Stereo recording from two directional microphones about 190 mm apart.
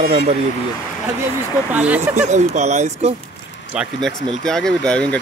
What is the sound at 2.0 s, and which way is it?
Speech, 35° right (ahead or behind).